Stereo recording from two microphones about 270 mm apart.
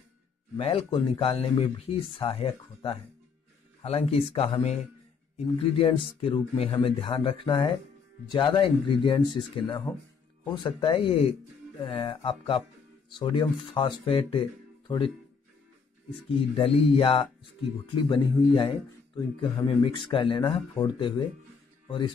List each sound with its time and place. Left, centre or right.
0.6 s speech: left
16.3 s speech: centre